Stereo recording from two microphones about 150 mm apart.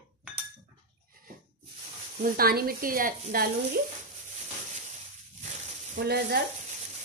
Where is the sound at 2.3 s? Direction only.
80° right.